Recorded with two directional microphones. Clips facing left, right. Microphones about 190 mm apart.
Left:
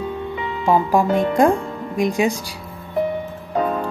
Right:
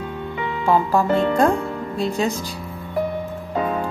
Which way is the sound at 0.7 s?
15° left (ahead or behind).